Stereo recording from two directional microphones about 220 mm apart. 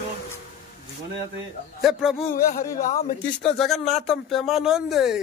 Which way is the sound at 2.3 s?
40° left (ahead or behind).